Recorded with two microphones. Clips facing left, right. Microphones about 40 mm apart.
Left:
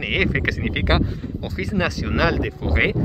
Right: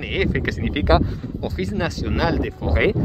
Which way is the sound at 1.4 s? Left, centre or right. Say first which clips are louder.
Left 1 dB; left.